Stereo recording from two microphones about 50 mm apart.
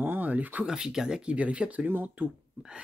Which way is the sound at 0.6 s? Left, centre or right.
Centre.